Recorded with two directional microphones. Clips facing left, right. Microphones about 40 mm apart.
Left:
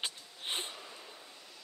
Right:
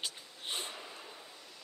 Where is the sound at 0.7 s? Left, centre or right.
Centre.